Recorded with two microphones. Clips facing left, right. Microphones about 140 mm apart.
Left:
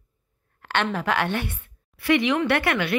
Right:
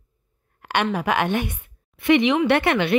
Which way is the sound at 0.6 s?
15° right (ahead or behind).